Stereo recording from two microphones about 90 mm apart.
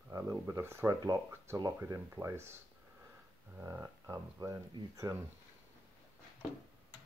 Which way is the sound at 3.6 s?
30° right (ahead or behind).